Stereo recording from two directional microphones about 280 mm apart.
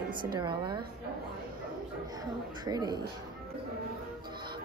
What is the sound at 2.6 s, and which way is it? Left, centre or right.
Speech, centre.